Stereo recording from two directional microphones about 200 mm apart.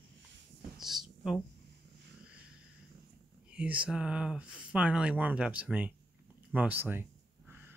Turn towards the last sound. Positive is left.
turn(degrees=-10)  # may be behind; listen again after turning